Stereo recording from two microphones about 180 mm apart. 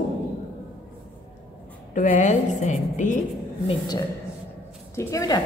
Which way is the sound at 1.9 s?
45° left (ahead or behind).